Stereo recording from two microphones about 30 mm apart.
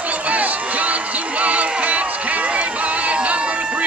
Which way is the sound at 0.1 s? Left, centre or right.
Right.